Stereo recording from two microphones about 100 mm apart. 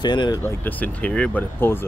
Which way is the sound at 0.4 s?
20° left (ahead or behind).